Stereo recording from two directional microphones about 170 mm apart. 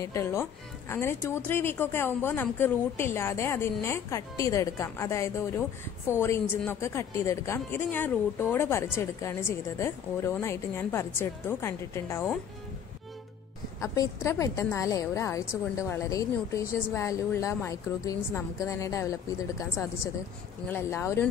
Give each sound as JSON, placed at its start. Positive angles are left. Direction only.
{"t": 0.0, "sound": "a woman's voice", "side_deg": 15}
{"t": 13.7, "sound": "a woman's voice", "side_deg": 20}
{"t": 20.6, "sound": "a woman's voice", "side_deg": 15}